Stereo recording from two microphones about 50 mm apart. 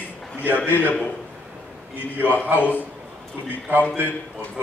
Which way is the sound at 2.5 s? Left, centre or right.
Left.